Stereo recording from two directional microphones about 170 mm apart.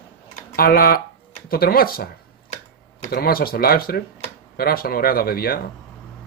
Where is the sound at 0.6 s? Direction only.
60° left (ahead or behind).